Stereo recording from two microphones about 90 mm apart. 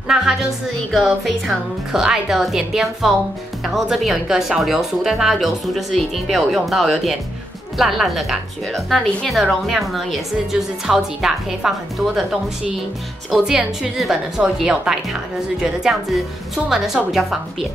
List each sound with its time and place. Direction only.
0.1 s speech: 5° right (ahead or behind)
13.3 s a woman's voice: 5° right (ahead or behind)